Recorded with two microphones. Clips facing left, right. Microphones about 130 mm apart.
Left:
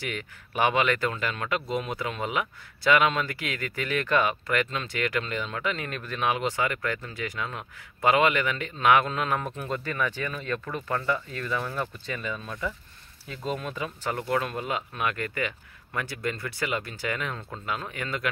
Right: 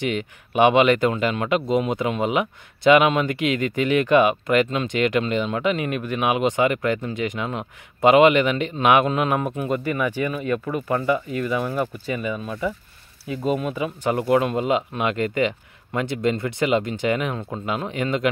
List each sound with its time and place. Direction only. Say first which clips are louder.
0.0 s speech: right 10 dB; 20° right (ahead or behind)